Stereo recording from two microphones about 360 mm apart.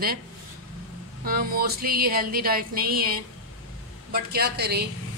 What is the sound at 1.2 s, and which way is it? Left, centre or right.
A man's voice, right.